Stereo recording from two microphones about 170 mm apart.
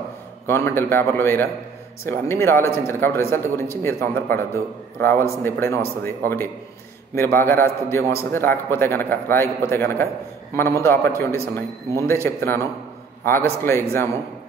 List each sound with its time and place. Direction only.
0.5 s a man's voice: 15° left (ahead or behind)